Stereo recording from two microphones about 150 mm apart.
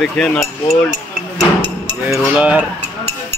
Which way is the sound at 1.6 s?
30° right (ahead or behind).